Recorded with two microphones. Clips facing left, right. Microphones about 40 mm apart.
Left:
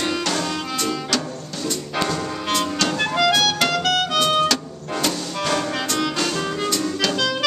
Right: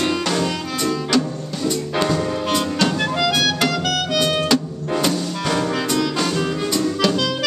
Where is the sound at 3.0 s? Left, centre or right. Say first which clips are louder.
Left 1 dB; centre.